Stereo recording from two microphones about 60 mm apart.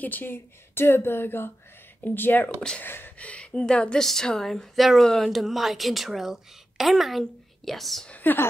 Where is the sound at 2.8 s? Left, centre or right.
Left.